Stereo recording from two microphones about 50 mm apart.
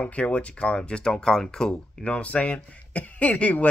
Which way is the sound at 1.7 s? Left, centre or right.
Left.